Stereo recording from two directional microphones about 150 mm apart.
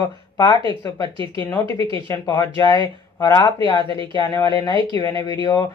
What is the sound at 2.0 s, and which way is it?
Speech, 25° left (ahead or behind).